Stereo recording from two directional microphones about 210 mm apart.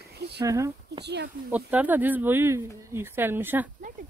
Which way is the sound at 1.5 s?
5° right (ahead or behind).